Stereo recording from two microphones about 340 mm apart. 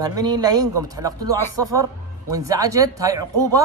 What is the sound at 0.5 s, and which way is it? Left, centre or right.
Speech, right.